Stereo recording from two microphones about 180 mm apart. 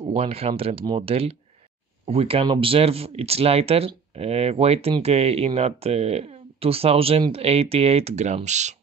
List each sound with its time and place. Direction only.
0.0 s speech: 35° right (ahead or behind)